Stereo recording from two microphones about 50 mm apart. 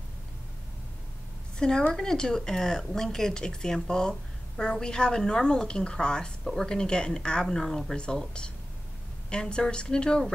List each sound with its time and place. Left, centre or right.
1.6 s speech: centre